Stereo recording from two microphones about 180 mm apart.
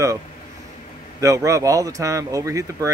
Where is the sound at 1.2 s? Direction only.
20° right (ahead or behind).